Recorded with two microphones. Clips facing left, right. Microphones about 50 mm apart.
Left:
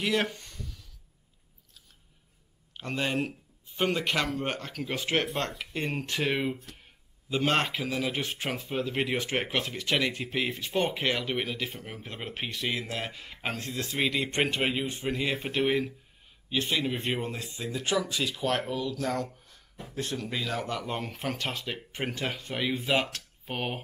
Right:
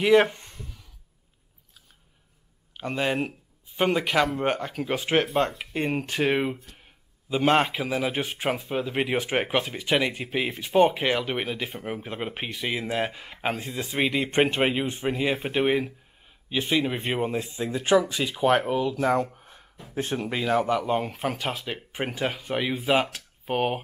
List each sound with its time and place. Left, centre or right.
0.0 s speech: right
0.6 s a sound: centre
2.7 s speech: centre; by 19.3 s right
19.3 s a sound: right
19.9 s speech: right
20.5 s speech: centre